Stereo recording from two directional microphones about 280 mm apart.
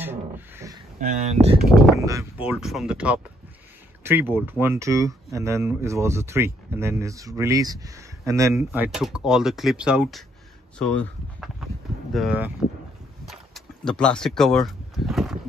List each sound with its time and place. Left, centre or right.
0.0 s a sound: centre
1.0 s speech: right
2.0 s speech: centre
13.8 s speech: centre